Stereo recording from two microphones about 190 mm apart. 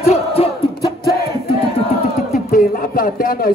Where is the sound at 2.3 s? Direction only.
45° left (ahead or behind).